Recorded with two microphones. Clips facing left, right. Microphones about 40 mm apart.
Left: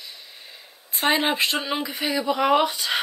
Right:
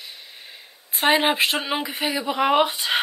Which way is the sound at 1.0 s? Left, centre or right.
Right.